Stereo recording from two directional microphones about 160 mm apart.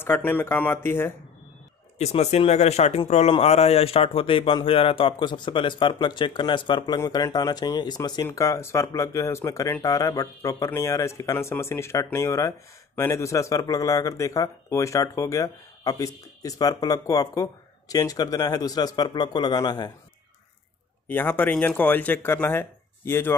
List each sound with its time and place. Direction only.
0.0 s speech: 10° left (ahead or behind)
2.0 s a man's voice: 40° left (ahead or behind)
7.0 s speech: 20° left (ahead or behind)
21.1 s speech: 10° left (ahead or behind)